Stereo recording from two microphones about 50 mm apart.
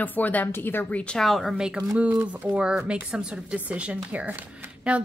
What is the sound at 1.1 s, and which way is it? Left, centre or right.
Speech, centre.